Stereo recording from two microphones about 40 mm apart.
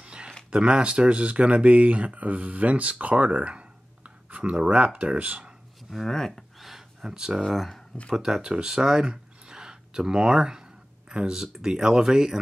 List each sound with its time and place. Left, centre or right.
0.0 s a sound: right
0.5 s speech: right
6.0 s speech: centre
6.6 s gasp: centre
7.1 s speech: centre
7.4 s speech: centre
8.2 s speech: centre